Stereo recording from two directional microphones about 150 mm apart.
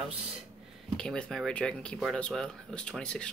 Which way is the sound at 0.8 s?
5° left (ahead or behind).